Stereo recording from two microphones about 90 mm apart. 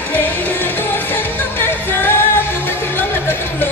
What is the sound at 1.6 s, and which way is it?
Music, 25° left (ahead or behind).